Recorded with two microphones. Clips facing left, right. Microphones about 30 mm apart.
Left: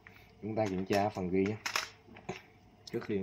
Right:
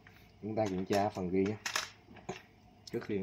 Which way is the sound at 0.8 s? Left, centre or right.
Centre.